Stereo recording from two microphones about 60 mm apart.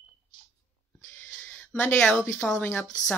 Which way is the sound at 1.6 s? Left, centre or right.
Left.